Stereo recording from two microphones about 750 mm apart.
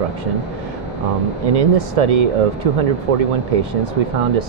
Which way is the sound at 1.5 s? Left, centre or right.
Right.